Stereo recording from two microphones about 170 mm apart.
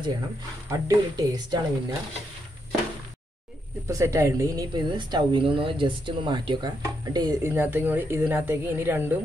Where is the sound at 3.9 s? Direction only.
15° right (ahead or behind).